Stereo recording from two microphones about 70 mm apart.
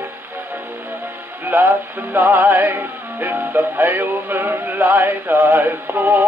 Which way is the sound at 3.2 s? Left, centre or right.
Right.